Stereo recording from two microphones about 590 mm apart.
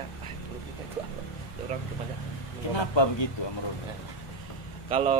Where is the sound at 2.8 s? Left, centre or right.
Left.